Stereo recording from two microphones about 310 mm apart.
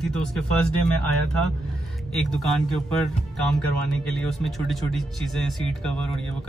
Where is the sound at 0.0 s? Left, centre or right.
Centre.